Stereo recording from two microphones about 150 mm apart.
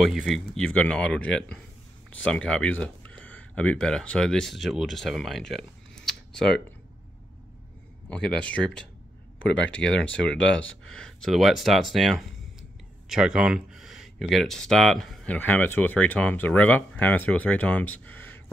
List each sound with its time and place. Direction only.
0.0 s speech: 5° right (ahead or behind)
8.1 s speech: 5° left (ahead or behind)